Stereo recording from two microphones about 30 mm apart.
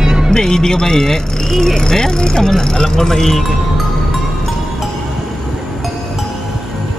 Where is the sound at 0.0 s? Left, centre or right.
Centre.